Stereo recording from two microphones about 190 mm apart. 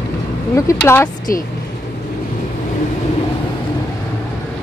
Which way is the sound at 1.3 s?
50° left (ahead or behind).